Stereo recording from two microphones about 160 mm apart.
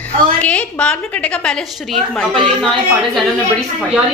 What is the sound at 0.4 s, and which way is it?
A woman's voice, 10° left (ahead or behind).